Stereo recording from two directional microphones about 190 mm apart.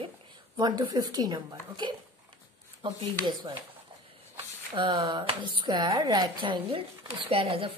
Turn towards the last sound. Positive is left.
turn(degrees=-30)  # may be behind; listen again after turning